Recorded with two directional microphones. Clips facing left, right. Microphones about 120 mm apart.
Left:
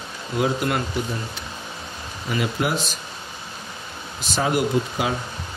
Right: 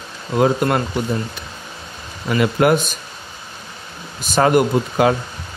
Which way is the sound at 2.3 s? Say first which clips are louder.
Right 9 dB; 60° right (ahead or behind).